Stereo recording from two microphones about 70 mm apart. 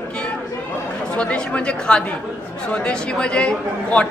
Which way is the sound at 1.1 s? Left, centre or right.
Centre.